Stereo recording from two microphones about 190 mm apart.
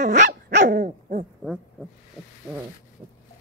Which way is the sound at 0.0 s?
40° right (ahead or behind).